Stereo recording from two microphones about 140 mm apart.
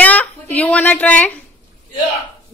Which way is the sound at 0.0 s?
10° left (ahead or behind).